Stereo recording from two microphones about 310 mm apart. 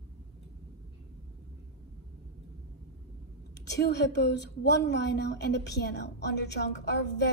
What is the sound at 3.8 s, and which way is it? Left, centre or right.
A woman's voice, left.